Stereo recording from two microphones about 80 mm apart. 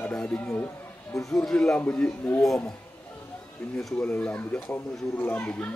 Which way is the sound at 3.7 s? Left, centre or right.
Centre.